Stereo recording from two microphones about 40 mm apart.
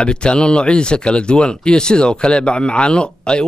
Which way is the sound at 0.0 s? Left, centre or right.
Left.